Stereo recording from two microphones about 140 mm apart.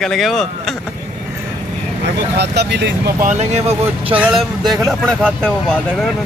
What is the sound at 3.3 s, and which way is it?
Speech, 55° right (ahead or behind).